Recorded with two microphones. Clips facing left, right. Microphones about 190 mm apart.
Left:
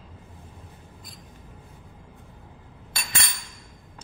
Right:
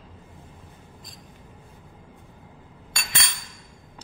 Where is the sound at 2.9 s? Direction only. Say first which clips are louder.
Even; 30° left (ahead or behind).